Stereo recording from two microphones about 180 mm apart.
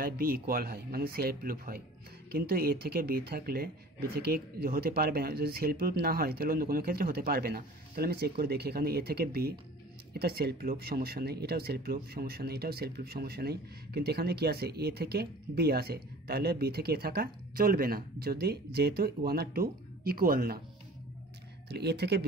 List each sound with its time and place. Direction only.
0.0 s speech: 55° right (ahead or behind)
21.6 s speech: 65° right (ahead or behind)